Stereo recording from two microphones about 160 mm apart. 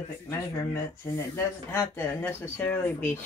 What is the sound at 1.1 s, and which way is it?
Speech, 15° left (ahead or behind).